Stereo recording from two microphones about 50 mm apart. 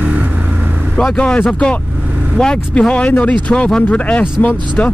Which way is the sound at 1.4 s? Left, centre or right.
Centre.